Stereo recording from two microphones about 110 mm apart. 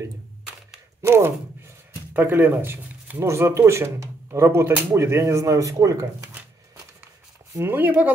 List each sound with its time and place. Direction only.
1.0 s a sound: 25° right (ahead or behind)
2.1 s speech: 20° right (ahead or behind)
7.5 s speech: 20° right (ahead or behind)